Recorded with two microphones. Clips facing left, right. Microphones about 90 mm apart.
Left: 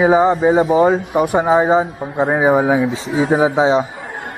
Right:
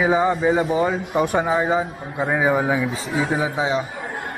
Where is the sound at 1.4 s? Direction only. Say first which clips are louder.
Left 7 dB; 30° left (ahead or behind).